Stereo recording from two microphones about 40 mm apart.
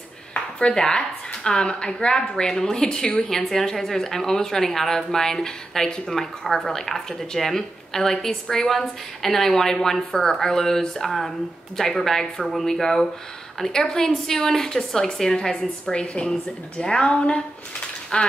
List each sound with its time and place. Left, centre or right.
0.3 s a sound: left
0.7 s a woman's voice: left
11.1 s a woman's voice: centre; by 18.3 s left